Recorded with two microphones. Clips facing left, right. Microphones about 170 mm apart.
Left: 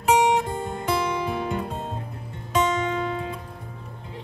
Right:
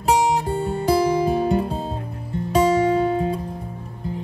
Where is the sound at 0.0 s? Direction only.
35° right (ahead or behind).